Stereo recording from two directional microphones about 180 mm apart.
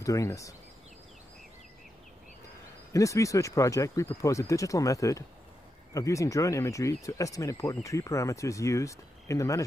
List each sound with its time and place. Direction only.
0.0 s speech: 20° left (ahead or behind)
2.9 s speech: 15° left (ahead or behind)